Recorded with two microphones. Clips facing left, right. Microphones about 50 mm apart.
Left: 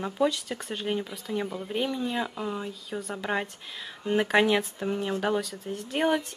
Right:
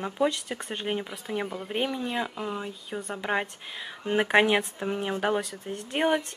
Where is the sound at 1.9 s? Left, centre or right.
Centre.